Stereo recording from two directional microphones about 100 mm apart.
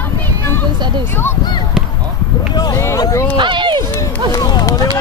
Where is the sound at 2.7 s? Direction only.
35° left (ahead or behind).